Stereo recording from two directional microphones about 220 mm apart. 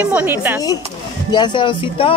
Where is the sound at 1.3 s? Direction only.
20° left (ahead or behind).